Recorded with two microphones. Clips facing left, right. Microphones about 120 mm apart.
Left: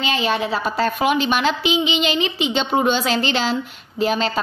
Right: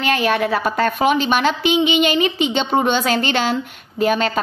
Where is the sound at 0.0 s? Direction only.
60° right (ahead or behind).